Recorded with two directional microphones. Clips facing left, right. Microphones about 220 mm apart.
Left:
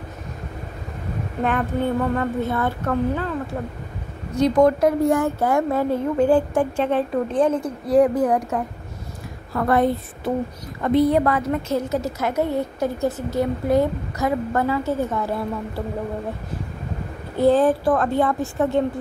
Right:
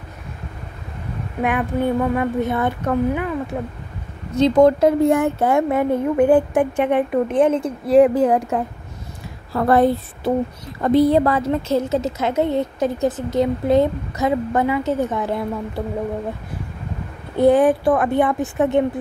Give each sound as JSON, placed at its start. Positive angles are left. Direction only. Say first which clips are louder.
{"t": 1.4, "sound": "child singing", "louder": "right 2 dB", "side_deg": -10}
{"t": 4.4, "sound": "a woman's voice", "louder": "right 3 dB", "side_deg": -25}
{"t": 17.4, "sound": "child singing", "louder": "right 3 dB", "side_deg": -15}